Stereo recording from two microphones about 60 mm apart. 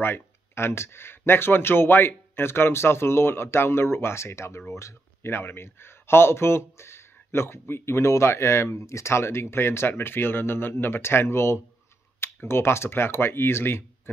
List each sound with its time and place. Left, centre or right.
0.0 s speech: left